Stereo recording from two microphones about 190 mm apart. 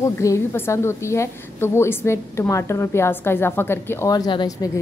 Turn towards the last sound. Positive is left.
turn(degrees=20)  # may be behind; listen again after turning